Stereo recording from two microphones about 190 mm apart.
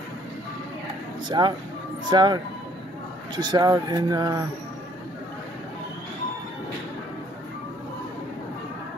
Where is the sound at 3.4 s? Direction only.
20° right (ahead or behind).